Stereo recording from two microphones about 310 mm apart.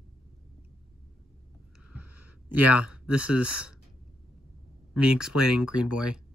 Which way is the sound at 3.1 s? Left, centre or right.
Centre.